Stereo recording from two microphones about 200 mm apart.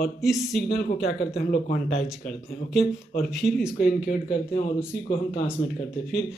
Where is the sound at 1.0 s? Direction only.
50° left (ahead or behind).